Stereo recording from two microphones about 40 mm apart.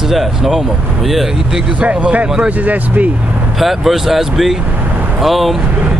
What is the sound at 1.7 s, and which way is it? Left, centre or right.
Speech, right.